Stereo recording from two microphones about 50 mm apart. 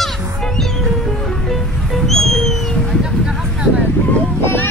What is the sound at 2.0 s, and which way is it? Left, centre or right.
Music, centre.